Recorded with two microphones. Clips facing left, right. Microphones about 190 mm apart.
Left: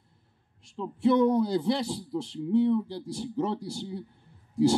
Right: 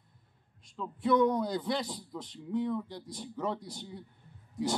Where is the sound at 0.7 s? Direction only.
25° left (ahead or behind).